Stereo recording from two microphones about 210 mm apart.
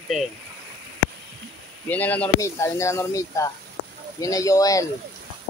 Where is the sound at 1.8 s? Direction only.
5° left (ahead or behind).